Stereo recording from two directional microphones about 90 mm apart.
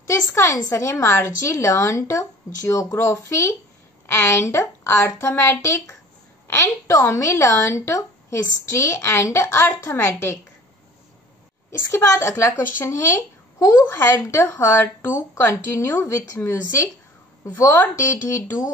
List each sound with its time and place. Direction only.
0.0 s a woman's voice: 35° left (ahead or behind)
11.9 s a woman's voice: 35° left (ahead or behind)